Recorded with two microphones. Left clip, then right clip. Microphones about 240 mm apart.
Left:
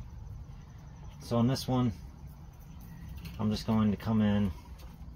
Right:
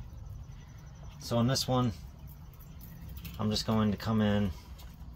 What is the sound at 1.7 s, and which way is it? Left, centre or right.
Speech, centre.